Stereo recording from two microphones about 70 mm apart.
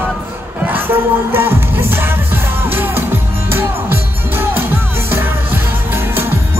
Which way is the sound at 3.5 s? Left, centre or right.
Right.